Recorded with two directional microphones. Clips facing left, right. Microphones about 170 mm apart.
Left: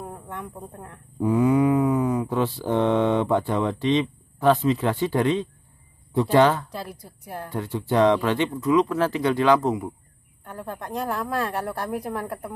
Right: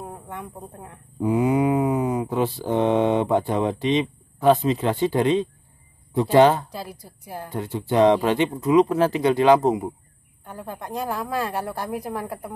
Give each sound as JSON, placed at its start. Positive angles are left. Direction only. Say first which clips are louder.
{"t": 0.0, "sound": "a sound", "louder": "even", "side_deg": -5}
{"t": 1.3, "sound": "mantra", "louder": "left 1 dB", "side_deg": -15}
{"t": 6.3, "sound": "speech", "louder": "right 3 dB", "side_deg": -20}
{"t": 6.7, "sound": "a woman's voice", "louder": "even", "side_deg": -5}
{"t": 7.4, "sound": "speech", "louder": "even", "side_deg": -15}
{"t": 10.4, "sound": "a woman's voice", "louder": "even", "side_deg": -5}